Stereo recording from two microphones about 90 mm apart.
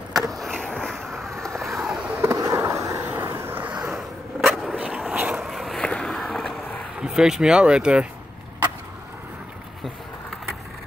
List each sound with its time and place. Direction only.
0.1 s vehicle: centre (ahead or behind)
2.2 s skateboard: 35° right (ahead or behind)
3.7 s a sound: 10° right (ahead or behind)
4.4 s a sound: centre (ahead or behind)
4.7 s vehicle: 15° right (ahead or behind); by 5.9 s centre (ahead or behind)
5.9 s skateboard: 10° left (ahead or behind)
7.0 s speech: 10° right (ahead or behind)